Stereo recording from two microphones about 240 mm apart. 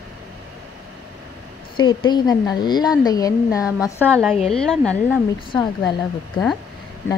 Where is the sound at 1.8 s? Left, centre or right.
Centre.